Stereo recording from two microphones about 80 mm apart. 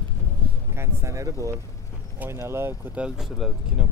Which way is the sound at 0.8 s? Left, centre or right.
Right.